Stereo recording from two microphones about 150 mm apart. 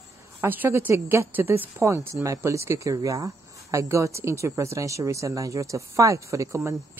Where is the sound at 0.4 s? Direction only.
15° right (ahead or behind).